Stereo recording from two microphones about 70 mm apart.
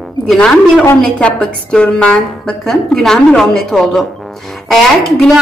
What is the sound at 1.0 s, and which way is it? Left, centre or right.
A woman's voice, centre.